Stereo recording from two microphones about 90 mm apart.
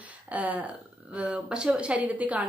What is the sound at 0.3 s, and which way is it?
A woman's voice, 15° right (ahead or behind).